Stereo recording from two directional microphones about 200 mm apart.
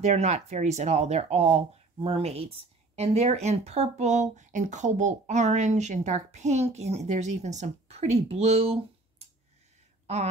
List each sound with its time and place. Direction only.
0.0 s speech: 35° right (ahead or behind)